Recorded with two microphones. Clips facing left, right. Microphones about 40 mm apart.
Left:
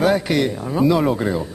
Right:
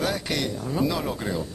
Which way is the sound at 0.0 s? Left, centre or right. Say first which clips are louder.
Left 9 dB; centre.